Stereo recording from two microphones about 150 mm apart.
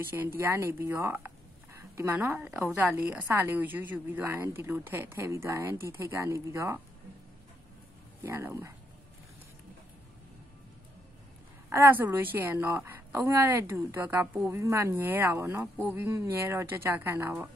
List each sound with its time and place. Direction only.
0.0 s speech: 15° right (ahead or behind)
8.2 s speech: 15° right (ahead or behind)
11.7 s speech: 15° right (ahead or behind)